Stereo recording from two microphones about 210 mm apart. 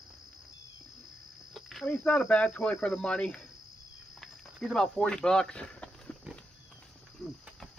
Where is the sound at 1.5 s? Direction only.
Centre (ahead or behind).